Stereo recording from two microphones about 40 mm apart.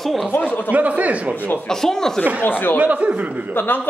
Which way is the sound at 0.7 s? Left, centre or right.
Right.